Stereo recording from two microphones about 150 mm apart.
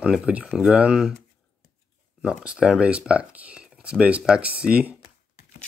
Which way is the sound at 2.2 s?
5° right (ahead or behind).